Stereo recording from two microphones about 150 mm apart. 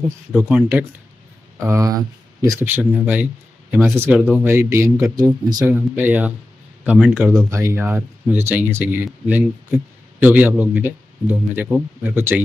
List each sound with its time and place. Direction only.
0.4 s speech: 10° right (ahead or behind)
1.6 s speech: 20° right (ahead or behind)
2.6 s speech: 15° right (ahead or behind)
5.9 s speech: 10° right (ahead or behind)